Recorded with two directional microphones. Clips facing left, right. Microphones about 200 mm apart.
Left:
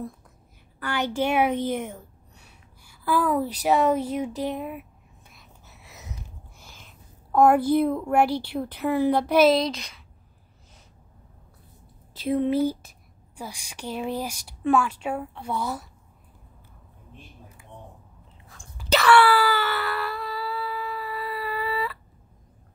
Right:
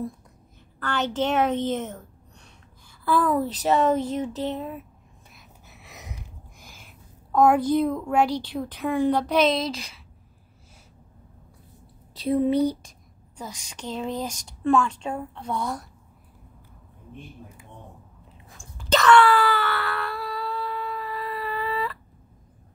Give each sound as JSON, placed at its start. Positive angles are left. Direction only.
{"t": 0.7, "sound": "a woman's voice", "side_deg": 10}
{"t": 5.7, "sound": "a sound", "side_deg": -20}
{"t": 7.3, "sound": "speech", "side_deg": 5}
{"t": 9.8, "sound": "speech", "side_deg": -5}
{"t": 12.1, "sound": "speech", "side_deg": 0}
{"t": 18.8, "sound": "wail", "side_deg": 10}